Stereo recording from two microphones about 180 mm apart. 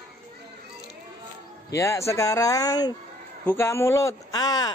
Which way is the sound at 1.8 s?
15° left (ahead or behind).